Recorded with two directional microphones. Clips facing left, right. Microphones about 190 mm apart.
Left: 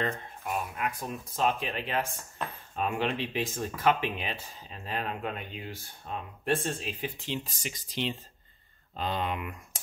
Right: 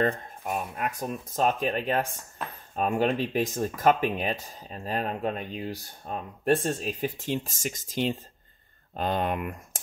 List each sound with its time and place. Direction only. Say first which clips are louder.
0.5 s speech: right 2 dB; 45° right (ahead or behind)